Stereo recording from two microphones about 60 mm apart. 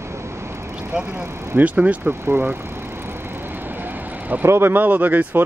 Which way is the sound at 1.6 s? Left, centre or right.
Right.